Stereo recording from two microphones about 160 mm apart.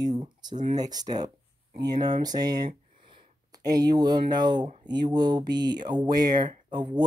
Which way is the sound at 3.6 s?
25° right (ahead or behind).